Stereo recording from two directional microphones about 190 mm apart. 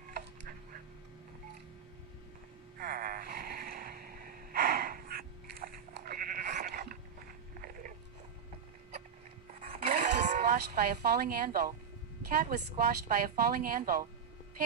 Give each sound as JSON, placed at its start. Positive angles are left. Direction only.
{"t": 2.8, "sound": "gasp", "side_deg": -50}
{"t": 9.5, "sound": "a sound", "side_deg": -45}
{"t": 12.3, "sound": "speech", "side_deg": -50}